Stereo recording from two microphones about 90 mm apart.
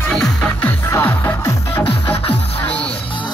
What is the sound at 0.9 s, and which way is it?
Music, 25° left (ahead or behind).